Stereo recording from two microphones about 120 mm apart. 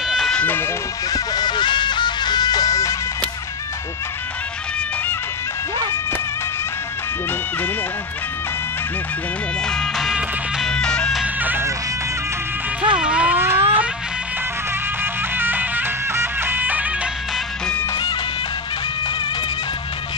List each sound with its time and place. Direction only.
0.1 s a sound: centre (ahead or behind)
0.4 s speech: 15° left (ahead or behind)
1.1 s music: 35° left (ahead or behind)
9.7 s music: 5° left (ahead or behind)
11.4 s music: 15° right (ahead or behind)
12.8 s a sound: 10° right (ahead or behind)
15.3 s music: 15° right (ahead or behind)